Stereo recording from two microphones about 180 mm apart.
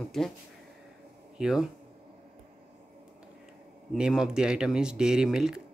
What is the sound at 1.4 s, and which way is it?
Speech, centre (ahead or behind).